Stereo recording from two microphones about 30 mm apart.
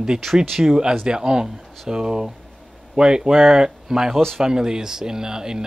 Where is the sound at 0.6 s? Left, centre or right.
Centre.